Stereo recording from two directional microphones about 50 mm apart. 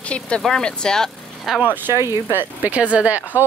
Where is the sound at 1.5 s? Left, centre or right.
Centre.